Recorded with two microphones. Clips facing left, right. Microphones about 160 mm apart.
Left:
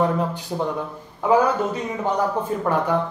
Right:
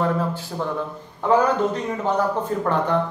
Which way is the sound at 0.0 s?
15° left (ahead or behind).